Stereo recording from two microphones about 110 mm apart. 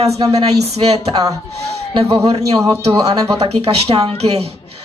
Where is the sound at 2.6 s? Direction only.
35° right (ahead or behind).